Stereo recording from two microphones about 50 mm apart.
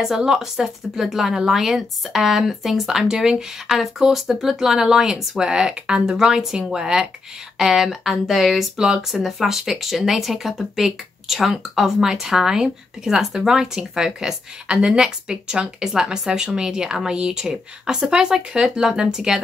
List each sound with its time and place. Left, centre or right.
0.0 s speech: centre
8.7 s speech: centre